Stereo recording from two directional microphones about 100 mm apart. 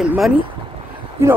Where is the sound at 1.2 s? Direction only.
25° right (ahead or behind).